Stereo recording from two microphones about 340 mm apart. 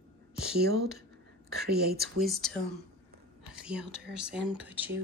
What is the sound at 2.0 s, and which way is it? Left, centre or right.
Speech, centre.